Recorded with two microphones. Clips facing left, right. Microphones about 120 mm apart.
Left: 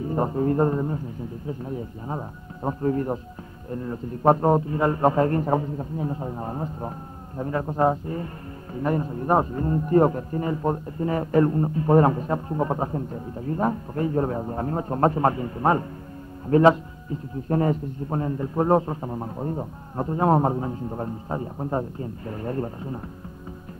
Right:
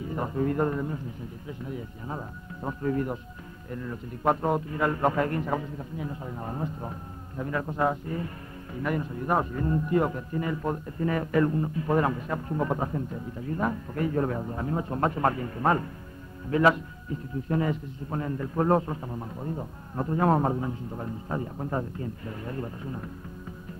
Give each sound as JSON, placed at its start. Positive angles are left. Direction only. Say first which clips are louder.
{"t": 0.0, "sound": "speech", "louder": "left 5 dB", "side_deg": 35}
{"t": 16.4, "sound": "speech", "louder": "left 6 dB", "side_deg": 40}
{"t": 18.2, "sound": "a man's voice", "louder": "left 2 dB", "side_deg": 25}